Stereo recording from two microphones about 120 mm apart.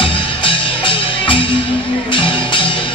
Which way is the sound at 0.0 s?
45° left (ahead or behind).